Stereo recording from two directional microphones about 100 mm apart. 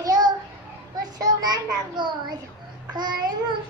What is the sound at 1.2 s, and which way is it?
Speech, 40° right (ahead or behind).